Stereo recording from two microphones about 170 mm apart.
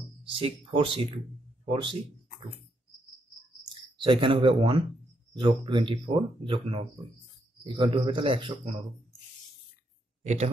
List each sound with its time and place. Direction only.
0.3 s speech: 30° right (ahead or behind)
4.0 s speech: 30° right (ahead or behind)